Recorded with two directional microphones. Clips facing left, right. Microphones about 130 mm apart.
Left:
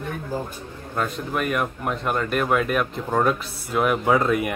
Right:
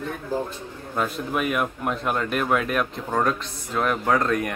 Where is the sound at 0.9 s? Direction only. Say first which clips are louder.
Even; 5° right (ahead or behind).